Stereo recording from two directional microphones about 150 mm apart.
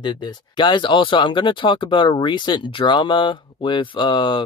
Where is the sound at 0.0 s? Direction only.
30° left (ahead or behind).